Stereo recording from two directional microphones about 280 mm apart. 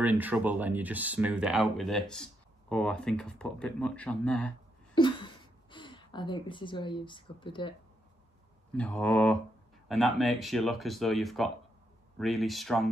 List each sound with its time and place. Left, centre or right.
0.0 s speech: centre
4.9 s speech: centre
8.7 s speech: centre